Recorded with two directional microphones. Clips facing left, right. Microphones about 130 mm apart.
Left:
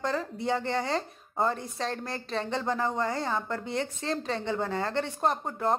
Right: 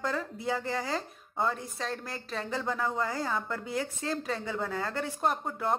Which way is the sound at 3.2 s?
25° left (ahead or behind).